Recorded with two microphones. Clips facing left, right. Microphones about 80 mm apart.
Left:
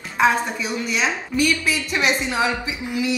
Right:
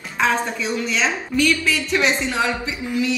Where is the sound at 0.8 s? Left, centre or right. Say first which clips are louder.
Right 1 dB; centre.